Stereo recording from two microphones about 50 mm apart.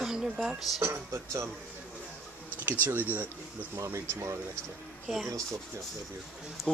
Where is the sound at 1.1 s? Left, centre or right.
Right.